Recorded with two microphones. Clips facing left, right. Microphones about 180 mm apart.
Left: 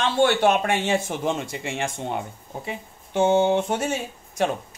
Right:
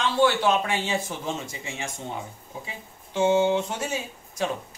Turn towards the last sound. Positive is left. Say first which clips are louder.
# left 4 dB
turn(degrees=60)  # may be behind; listen again after turning